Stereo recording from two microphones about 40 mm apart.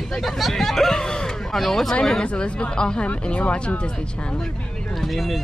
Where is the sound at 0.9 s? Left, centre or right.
Centre.